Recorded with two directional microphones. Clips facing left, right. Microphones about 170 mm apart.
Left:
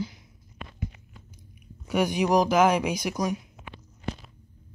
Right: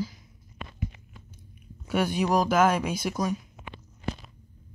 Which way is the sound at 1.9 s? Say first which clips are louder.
Left 2 dB; 15° left (ahead or behind).